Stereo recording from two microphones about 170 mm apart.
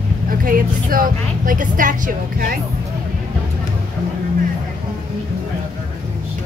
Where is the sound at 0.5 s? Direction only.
55° right (ahead or behind).